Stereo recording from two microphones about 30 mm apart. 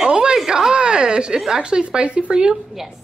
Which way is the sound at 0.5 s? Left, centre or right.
Right.